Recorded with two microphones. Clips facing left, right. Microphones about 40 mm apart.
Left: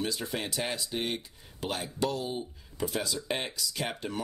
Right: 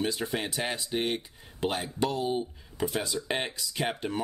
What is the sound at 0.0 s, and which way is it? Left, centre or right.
Speech, centre.